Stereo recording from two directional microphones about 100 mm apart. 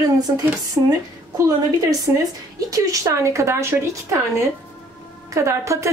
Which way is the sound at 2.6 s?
35° right (ahead or behind).